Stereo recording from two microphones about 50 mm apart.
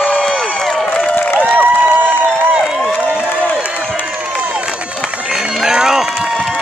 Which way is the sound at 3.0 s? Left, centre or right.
Right.